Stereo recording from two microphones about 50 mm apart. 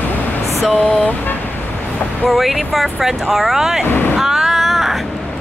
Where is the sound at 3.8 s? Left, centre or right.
Left.